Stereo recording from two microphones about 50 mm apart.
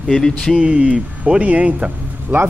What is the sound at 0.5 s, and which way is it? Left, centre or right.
Speech, right.